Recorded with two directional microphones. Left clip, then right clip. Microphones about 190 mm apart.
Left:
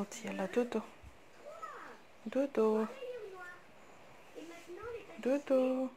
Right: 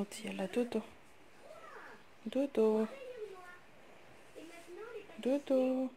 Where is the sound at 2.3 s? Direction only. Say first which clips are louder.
Even; 15° right (ahead or behind).